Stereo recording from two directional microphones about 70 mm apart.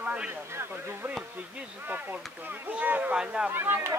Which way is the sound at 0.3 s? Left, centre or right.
Right.